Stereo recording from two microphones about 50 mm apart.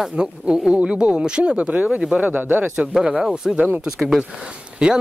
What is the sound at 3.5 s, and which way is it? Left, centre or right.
Speech, right.